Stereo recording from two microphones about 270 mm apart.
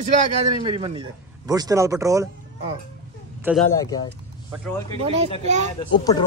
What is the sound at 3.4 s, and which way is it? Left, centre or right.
Speech, centre.